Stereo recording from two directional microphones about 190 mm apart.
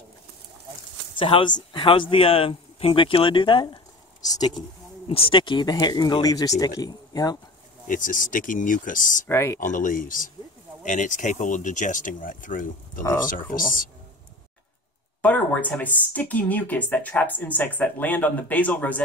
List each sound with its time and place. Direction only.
1.1 s a man's voice: 25° left (ahead or behind)
7.8 s speech: 45° left (ahead or behind)
9.3 s speech: 15° left (ahead or behind)
9.6 s speech: 45° left (ahead or behind)
15.2 s speech: 10° left (ahead or behind)